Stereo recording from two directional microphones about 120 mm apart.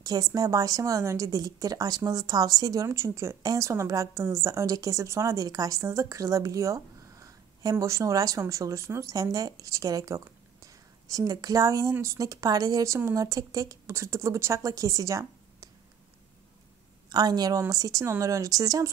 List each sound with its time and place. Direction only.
0.0 s speech: 30° right (ahead or behind)
17.1 s a woman's voice: 35° right (ahead or behind)